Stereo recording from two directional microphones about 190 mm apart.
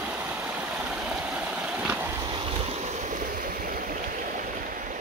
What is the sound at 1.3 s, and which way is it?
Stream, 5° right (ahead or behind).